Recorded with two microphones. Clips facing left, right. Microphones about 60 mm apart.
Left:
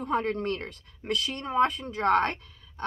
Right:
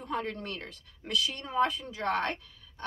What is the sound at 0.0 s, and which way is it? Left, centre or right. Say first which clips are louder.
Speech: left 7 dB; left.